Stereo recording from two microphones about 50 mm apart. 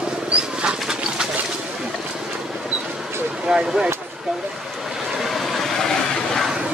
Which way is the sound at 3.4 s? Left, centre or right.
Centre.